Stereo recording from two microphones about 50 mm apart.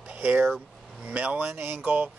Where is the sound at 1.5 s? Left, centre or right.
Right.